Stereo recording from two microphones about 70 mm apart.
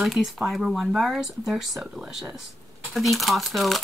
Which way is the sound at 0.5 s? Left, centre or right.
Centre.